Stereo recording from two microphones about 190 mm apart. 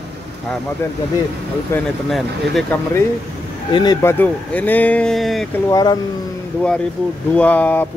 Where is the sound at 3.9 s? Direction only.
10° left (ahead or behind).